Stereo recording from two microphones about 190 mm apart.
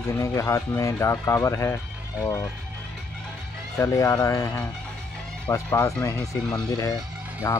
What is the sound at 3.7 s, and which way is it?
Speech, 15° left (ahead or behind).